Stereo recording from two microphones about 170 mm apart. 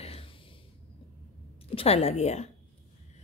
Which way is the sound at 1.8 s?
35° left (ahead or behind).